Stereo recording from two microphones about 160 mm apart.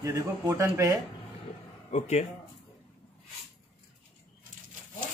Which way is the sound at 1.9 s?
45° left (ahead or behind).